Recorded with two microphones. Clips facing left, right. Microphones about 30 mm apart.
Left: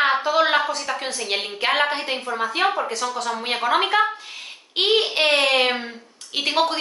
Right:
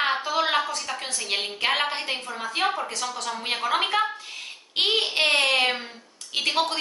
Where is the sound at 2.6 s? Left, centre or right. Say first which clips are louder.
Left 2 dB; left.